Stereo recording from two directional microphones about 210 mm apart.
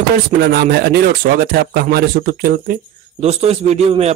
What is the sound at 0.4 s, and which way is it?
Speech, 50° right (ahead or behind).